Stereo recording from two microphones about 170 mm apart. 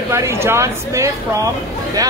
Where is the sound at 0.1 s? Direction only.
15° right (ahead or behind).